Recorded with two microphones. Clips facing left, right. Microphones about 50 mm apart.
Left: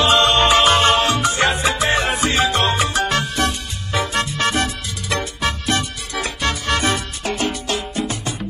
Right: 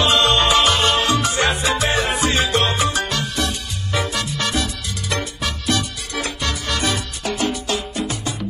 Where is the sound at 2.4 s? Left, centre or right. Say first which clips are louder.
Left 1 dB; centre.